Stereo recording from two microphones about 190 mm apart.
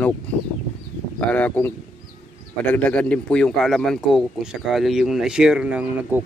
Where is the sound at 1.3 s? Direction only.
10° left (ahead or behind).